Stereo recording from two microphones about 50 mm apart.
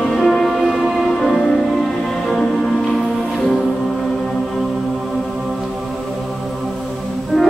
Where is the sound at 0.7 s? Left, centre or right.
Centre.